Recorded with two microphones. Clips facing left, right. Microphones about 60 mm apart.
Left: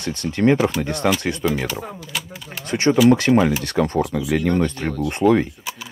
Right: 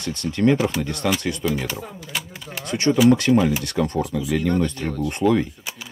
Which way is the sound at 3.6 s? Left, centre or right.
Left.